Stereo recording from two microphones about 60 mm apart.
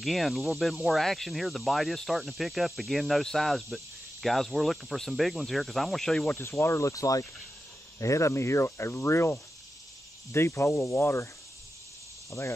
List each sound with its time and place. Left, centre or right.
0.0 s speech: centre
6.3 s speech: left
8.0 s speech: left
12.3 s speech: left